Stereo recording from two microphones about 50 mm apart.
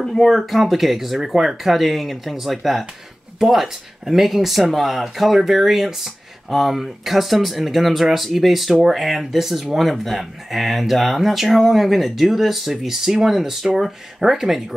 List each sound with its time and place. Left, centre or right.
0.0 s speech: centre